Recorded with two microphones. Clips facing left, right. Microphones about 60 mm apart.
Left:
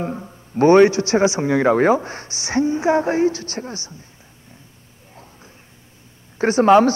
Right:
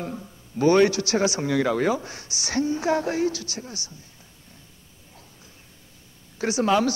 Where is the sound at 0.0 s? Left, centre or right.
Left.